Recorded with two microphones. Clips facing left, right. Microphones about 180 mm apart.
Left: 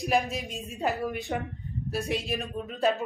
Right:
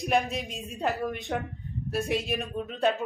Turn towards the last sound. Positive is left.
turn(degrees=0)  # may be behind; listen again after turning